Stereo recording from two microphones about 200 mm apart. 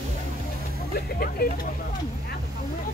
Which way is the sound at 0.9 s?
45° left (ahead or behind).